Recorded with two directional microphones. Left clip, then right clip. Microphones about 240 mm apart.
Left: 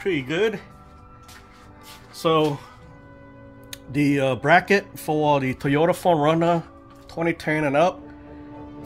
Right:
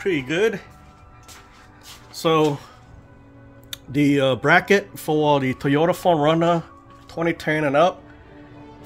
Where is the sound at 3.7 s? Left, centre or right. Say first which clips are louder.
Right 2 dB; centre.